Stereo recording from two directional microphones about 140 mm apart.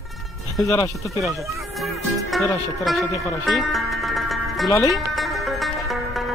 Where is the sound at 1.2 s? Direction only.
Centre (ahead or behind).